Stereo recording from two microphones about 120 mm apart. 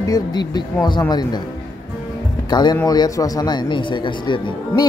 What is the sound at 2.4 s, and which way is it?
Speech, 35° left (ahead or behind).